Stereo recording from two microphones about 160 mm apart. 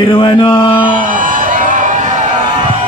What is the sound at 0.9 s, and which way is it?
Music, 55° right (ahead or behind).